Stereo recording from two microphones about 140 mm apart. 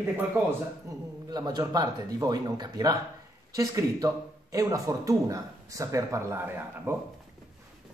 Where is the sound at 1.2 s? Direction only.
30° right (ahead or behind).